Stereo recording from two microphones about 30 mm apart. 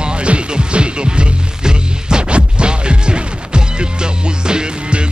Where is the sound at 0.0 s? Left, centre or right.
Right.